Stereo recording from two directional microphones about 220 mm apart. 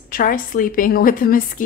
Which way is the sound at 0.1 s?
40° left (ahead or behind).